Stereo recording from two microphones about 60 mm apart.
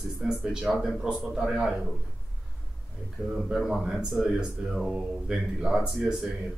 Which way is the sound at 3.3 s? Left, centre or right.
Centre.